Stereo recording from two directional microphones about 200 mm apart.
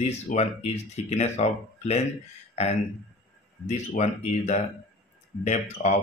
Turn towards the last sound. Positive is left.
turn(degrees=35)  # may be behind; listen again after turning